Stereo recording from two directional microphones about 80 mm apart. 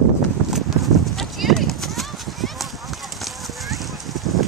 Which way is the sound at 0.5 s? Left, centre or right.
Centre.